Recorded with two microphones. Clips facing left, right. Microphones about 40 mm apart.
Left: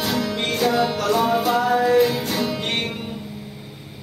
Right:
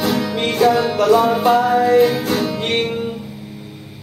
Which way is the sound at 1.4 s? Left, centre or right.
Centre.